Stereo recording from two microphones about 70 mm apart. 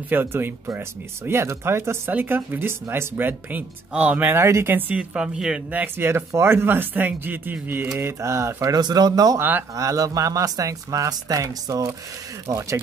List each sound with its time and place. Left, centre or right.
0.1 s speech: right
2.0 s speech: right
3.9 s a woman's voice: centre
4.3 s speech: right
4.7 s a woman's voice: right
5.9 s speech: right
8.0 s speech: right
8.7 s speech: right
9.4 s speech: right
9.8 s speech: right